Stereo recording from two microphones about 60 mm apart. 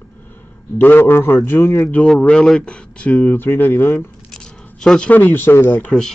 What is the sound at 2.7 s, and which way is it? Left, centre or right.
Speech, left.